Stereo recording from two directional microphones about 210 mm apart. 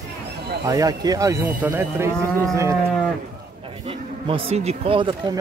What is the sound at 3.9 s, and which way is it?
Speech, 25° right (ahead or behind).